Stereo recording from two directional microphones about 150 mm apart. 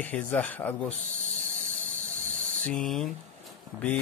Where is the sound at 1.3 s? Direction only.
60° right (ahead or behind).